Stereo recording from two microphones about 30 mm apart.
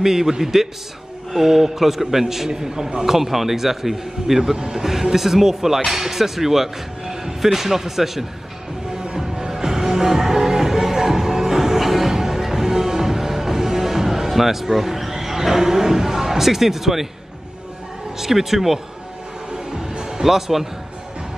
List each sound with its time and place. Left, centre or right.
0.0 s a man's voice: centre
3.1 s a man's voice: centre
8.9 s music: right
18.2 s a man's voice: centre
19.5 s music: right
20.0 s speech: centre